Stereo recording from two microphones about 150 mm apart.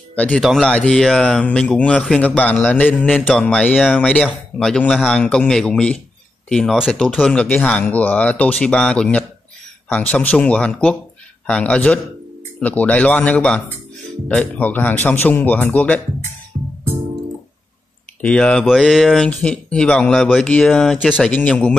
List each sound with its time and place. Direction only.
0.3 s speech: centre (ahead or behind)
16.5 s music: 35° right (ahead or behind)
18.2 s speech: 5° left (ahead or behind)